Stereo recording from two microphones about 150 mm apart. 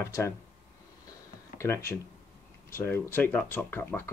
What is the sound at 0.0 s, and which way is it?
Speech, 20° left (ahead or behind).